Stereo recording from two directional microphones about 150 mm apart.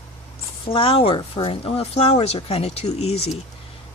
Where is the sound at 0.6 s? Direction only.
35° left (ahead or behind).